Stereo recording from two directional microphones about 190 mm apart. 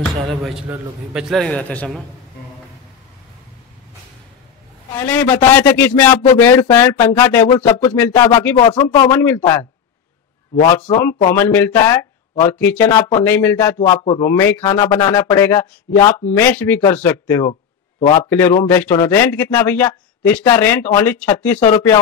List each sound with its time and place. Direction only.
0.1 s a man's voice: centre (ahead or behind)
4.9 s a man's voice: 10° left (ahead or behind)
8.5 s a man's voice: 25° left (ahead or behind)
11.0 s a man's voice: 15° left (ahead or behind)
18.0 s speech: 25° left (ahead or behind)
18.3 s a man's voice: 15° left (ahead or behind)